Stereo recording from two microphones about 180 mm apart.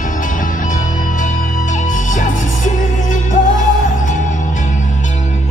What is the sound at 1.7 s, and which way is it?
Music, 45° left (ahead or behind).